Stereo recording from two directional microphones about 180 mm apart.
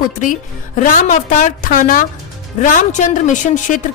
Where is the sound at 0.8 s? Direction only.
45° left (ahead or behind).